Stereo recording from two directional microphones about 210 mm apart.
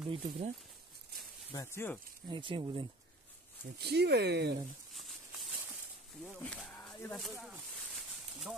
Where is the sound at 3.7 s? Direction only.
50° right (ahead or behind).